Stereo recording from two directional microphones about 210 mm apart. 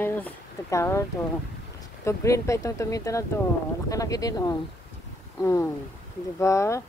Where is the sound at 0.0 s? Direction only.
10° left (ahead or behind).